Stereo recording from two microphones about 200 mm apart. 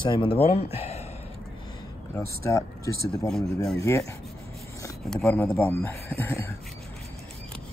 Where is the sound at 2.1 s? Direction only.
15° left (ahead or behind).